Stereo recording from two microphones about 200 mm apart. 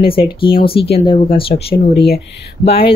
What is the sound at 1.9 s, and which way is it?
Speech, 50° left (ahead or behind).